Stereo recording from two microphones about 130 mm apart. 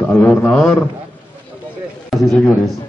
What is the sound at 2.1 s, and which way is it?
Speech, centre (ahead or behind).